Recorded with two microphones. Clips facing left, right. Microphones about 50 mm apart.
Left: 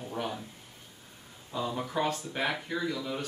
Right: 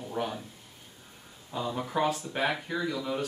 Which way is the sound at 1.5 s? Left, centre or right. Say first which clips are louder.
Right 1 dB; centre.